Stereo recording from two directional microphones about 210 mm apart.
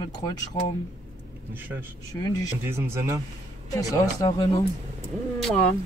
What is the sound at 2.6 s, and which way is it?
Speech, 10° right (ahead or behind).